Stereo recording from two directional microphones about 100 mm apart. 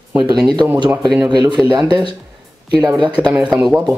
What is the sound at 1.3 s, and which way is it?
Speech, 45° right (ahead or behind).